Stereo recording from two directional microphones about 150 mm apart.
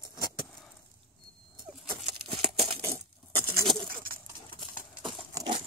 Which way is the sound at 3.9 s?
70° right (ahead or behind).